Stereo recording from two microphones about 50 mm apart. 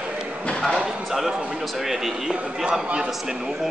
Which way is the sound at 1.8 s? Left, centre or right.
Centre.